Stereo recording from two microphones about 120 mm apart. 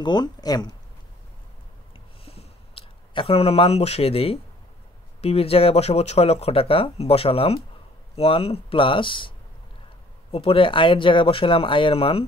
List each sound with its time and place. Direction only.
0.0 s speech: 35° left (ahead or behind)
2.2 s a sound: 55° left (ahead or behind)
5.2 s speech: 55° left (ahead or behind)
10.3 s speech: 50° left (ahead or behind)